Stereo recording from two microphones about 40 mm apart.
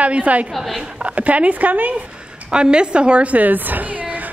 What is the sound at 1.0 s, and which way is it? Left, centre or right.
Speech, right.